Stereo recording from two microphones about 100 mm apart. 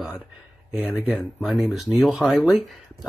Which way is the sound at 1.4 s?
Centre (ahead or behind).